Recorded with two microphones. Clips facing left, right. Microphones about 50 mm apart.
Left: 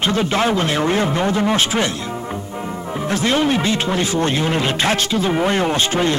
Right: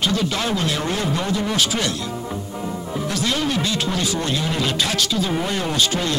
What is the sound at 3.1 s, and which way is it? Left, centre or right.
Speech, left.